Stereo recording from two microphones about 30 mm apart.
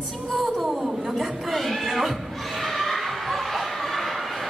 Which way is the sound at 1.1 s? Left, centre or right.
Centre.